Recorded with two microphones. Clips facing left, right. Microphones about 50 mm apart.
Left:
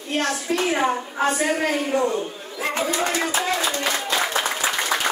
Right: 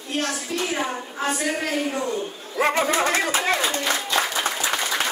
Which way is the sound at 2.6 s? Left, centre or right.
Right.